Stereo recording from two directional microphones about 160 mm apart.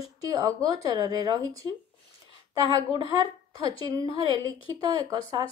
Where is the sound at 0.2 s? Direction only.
25° right (ahead or behind).